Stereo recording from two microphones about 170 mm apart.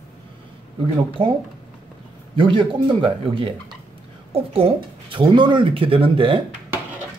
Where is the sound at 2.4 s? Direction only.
30° right (ahead or behind).